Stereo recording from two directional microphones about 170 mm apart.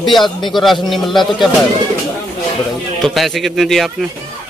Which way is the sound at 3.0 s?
Centre (ahead or behind).